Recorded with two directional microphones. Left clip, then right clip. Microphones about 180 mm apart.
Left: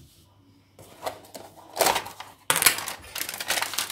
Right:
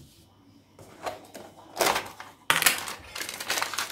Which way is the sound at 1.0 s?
25° left (ahead or behind).